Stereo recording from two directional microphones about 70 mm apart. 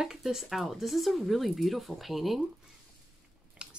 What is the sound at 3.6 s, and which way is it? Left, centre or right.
Chewing, centre.